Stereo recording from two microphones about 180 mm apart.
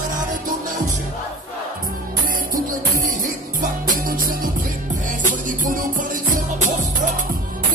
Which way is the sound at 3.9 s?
50° right (ahead or behind).